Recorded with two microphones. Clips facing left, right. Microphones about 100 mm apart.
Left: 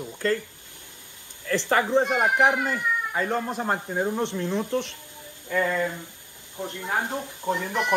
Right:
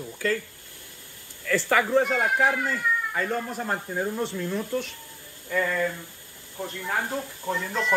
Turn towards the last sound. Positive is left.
turn(degrees=20)  # may be behind; listen again after turning